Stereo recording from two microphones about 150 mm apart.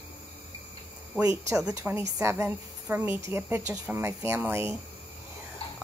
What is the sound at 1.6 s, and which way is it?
A woman's voice, 10° right (ahead or behind).